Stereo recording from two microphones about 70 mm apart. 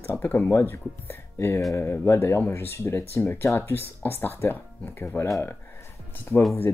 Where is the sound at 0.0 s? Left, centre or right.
Left.